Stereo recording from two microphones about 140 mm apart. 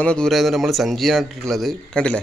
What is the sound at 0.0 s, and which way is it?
Speech, 5° left (ahead or behind).